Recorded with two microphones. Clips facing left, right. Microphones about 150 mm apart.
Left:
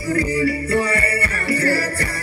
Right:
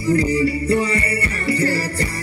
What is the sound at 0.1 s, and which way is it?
Music, 20° right (ahead or behind).